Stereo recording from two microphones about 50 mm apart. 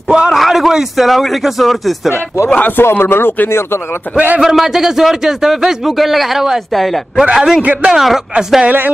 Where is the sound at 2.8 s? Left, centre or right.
Left.